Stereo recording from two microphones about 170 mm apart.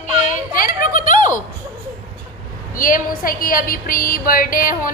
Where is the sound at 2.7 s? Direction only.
55° left (ahead or behind).